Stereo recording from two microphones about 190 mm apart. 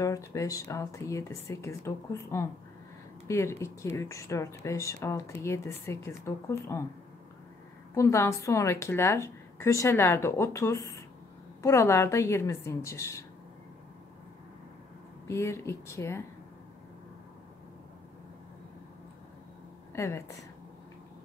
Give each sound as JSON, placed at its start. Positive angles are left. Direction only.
{"t": 0.0, "sound": "speech", "side_deg": 15}
{"t": 7.9, "sound": "speech", "side_deg": 15}
{"t": 15.2, "sound": "speech", "side_deg": 15}
{"t": 20.0, "sound": "speech", "side_deg": 15}